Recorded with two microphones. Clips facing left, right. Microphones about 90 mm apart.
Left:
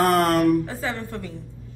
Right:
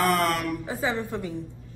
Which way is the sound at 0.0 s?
40° left (ahead or behind).